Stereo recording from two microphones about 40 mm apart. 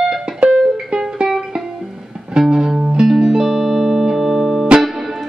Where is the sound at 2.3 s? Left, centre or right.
Centre.